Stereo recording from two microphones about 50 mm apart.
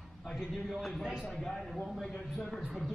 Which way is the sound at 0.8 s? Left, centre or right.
Centre.